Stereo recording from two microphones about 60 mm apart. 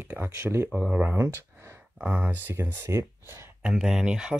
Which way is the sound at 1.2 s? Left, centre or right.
Right.